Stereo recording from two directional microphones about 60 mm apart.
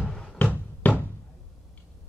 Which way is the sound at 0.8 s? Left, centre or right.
Left.